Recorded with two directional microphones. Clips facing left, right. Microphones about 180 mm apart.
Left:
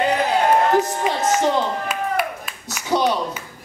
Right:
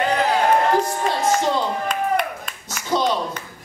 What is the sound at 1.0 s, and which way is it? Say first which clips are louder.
Clapping: left 1 dB; 15° left (ahead or behind).